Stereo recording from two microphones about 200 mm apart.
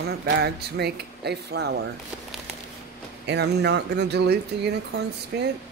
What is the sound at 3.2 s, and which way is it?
Speech, 55° right (ahead or behind).